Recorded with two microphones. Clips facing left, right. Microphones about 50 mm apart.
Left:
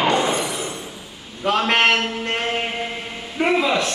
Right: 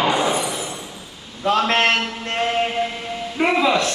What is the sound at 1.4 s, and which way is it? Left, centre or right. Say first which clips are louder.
Speech: right 1 dB; centre.